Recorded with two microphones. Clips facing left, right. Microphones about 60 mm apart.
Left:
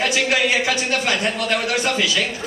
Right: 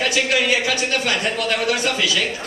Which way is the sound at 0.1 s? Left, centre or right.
Left.